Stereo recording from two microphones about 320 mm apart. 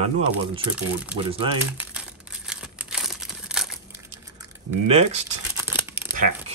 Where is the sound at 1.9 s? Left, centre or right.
Centre.